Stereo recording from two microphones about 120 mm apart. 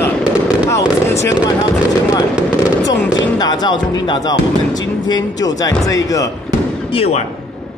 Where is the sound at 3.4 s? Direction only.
35° left (ahead or behind).